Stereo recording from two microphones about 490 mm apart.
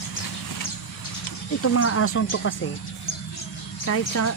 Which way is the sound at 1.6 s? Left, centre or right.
Left.